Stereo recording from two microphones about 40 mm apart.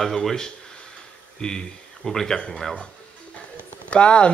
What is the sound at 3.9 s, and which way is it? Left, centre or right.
Speech, left.